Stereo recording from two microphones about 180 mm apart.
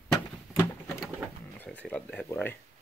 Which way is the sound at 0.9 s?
Centre (ahead or behind).